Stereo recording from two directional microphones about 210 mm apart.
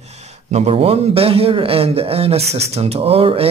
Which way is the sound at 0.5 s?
30° right (ahead or behind).